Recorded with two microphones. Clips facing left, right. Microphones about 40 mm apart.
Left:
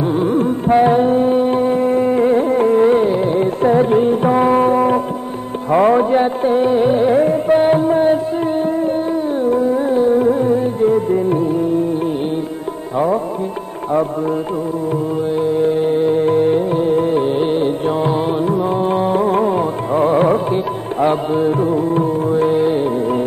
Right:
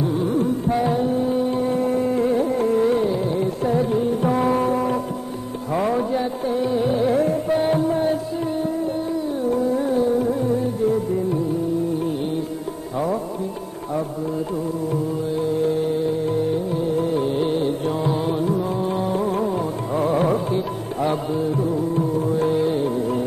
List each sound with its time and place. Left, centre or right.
0.0 s music: left
4.3 s music: left
15.3 s music: left